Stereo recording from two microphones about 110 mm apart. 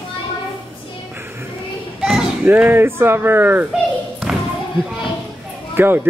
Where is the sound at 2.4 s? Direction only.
15° right (ahead or behind).